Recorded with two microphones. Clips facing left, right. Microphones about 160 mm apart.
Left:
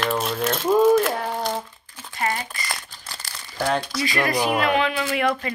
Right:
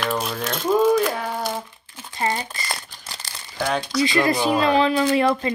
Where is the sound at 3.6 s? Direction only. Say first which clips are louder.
Left 1 dB; centre (ahead or behind).